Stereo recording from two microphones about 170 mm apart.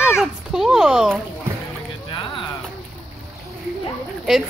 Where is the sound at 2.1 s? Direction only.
30° left (ahead or behind).